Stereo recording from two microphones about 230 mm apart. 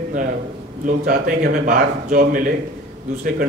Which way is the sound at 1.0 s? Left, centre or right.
Right.